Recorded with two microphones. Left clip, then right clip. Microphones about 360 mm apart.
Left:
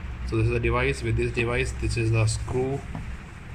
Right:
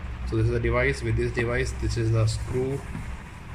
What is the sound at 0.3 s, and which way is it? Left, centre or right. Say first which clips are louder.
Speech: left 1 dB; centre.